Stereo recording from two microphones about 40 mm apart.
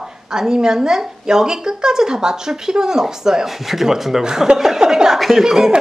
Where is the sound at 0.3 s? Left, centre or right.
Centre.